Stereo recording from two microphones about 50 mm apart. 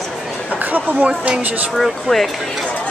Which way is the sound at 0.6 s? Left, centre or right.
Right.